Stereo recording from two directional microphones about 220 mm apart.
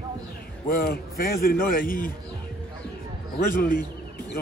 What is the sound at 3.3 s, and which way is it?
Speech, 40° left (ahead or behind).